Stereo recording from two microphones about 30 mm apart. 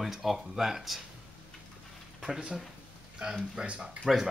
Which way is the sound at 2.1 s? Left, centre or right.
Centre.